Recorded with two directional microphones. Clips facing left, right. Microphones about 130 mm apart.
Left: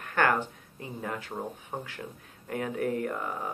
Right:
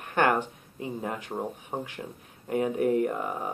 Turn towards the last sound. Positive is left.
turn(degrees=-15)  # may be behind; listen again after turning